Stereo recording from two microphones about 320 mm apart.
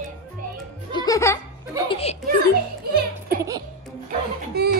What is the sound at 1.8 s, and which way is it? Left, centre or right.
Speech, centre.